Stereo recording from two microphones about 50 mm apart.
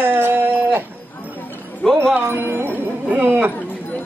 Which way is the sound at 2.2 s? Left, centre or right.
Right.